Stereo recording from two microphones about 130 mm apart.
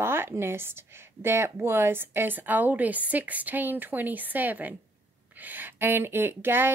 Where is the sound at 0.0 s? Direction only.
20° right (ahead or behind).